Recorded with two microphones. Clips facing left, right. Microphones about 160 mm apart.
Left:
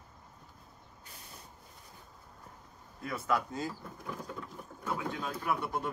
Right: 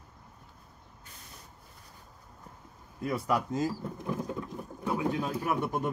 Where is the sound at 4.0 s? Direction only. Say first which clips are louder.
Right 6 dB; 20° right (ahead or behind).